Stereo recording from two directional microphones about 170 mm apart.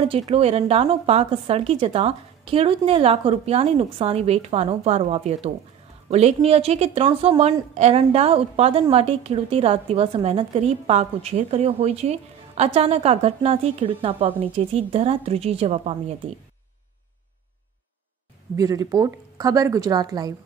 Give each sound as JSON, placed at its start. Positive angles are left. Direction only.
{"t": 0.0, "sound": "a woman's voice", "side_deg": -35}
{"t": 18.6, "sound": "a woman's voice", "side_deg": -20}